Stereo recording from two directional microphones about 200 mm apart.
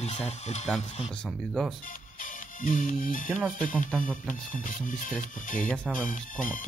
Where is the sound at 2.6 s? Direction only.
45° left (ahead or behind).